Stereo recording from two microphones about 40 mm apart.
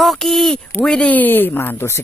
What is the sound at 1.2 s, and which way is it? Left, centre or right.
Speech, left.